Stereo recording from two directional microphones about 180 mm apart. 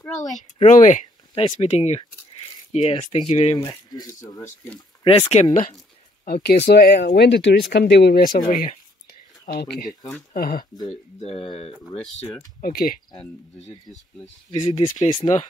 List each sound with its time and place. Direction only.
0.6 s speech: 45° left (ahead or behind)
1.3 s speech: 35° left (ahead or behind)
3.5 s speech: 20° left (ahead or behind)
5.3 s speech: 40° left (ahead or behind)
6.2 s speech: 60° left (ahead or behind); by 7.5 s 75° left (ahead or behind)
7.7 s speech: 65° left (ahead or behind)
10.9 s speech: 35° left (ahead or behind)
11.9 s speech: centre (ahead or behind)
12.6 s speech: 55° left (ahead or behind)
14.7 s speech: 25° left (ahead or behind)